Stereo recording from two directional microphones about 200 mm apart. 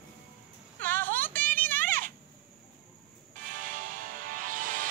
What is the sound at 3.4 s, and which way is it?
Music, 40° right (ahead or behind).